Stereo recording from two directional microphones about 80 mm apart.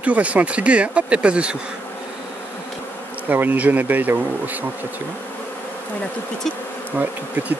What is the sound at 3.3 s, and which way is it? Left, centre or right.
Bee, right.